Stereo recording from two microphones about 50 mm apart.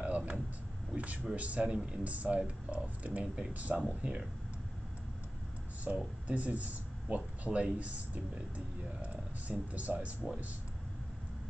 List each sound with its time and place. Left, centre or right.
0.0 s a sound: right
0.9 s speech: right
5.9 s speech: right